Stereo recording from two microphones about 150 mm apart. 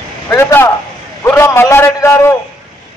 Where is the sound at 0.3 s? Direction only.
15° left (ahead or behind).